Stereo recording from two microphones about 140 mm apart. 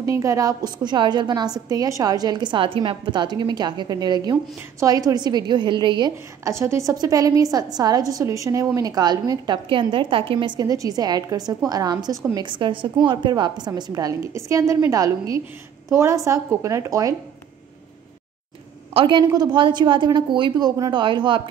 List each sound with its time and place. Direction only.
0.0 s a woman's voice: 20° right (ahead or behind)
6.5 s a woman's voice: 20° right (ahead or behind)
18.9 s a woman's voice: 35° right (ahead or behind)